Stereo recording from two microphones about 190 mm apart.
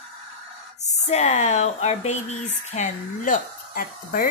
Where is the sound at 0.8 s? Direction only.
35° left (ahead or behind).